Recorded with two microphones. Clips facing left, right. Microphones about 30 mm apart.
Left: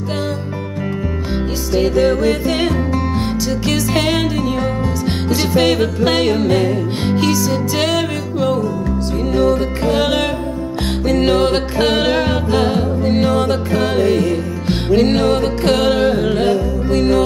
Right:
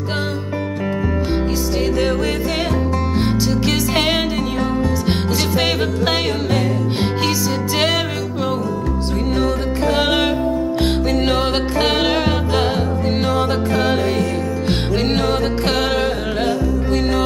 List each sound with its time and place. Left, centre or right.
1.8 s music: centre
3.6 s music: centre
5.3 s music: centre
5.6 s music: centre
7.0 s music: centre